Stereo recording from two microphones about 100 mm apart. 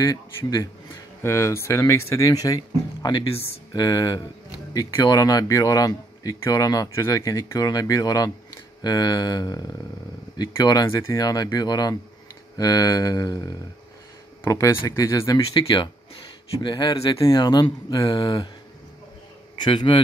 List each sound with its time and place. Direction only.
1.2 s speech: 30° left (ahead or behind)
14.4 s speech: 30° left (ahead or behind)
15.5 s speech: 50° left (ahead or behind)
19.6 s speech: 55° left (ahead or behind)